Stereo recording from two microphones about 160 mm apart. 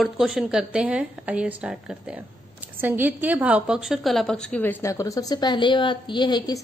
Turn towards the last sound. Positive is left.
turn(degrees=25)  # may be behind; listen again after turning